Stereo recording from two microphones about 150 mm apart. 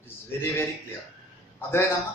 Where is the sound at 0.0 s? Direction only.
15° left (ahead or behind).